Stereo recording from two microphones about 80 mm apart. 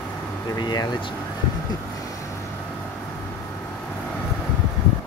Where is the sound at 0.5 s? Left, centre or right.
Left.